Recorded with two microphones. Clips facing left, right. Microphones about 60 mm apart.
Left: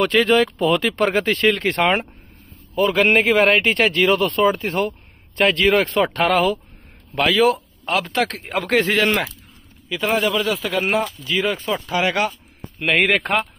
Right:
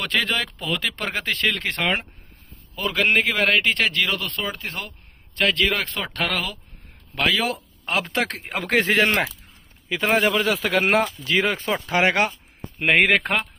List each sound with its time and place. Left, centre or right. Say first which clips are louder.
0.0 s speech: left 8 dB; centre
7.2 s speech: left 6 dB; centre
7.8 s speech: left 3 dB; centre
9.8 s speech: even; right
10.7 s speech: right 2 dB; right
11.2 s speech: even; right
13.0 s speech: left 1 dB; centre